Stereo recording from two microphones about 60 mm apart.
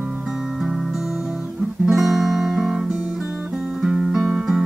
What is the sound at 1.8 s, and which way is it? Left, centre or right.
Guitar, centre.